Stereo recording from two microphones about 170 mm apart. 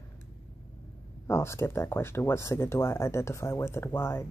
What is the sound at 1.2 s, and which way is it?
Speech, 15° left (ahead or behind).